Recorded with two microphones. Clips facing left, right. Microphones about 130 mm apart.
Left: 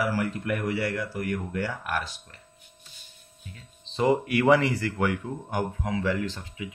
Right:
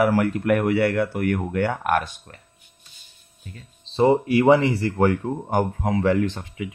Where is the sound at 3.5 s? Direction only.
30° right (ahead or behind).